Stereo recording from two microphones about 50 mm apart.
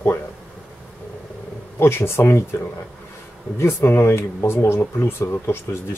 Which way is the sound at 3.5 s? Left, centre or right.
Left.